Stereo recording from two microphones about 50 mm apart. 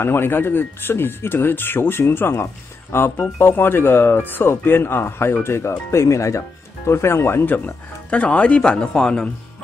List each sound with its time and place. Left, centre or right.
0.0 s speech: left
6.9 s speech: left
7.4 s speech: left
8.1 s speech: left